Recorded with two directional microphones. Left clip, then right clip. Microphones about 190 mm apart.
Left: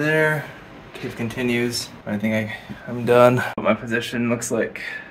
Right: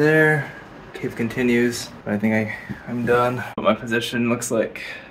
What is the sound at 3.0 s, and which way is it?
Speech, 45° left (ahead or behind).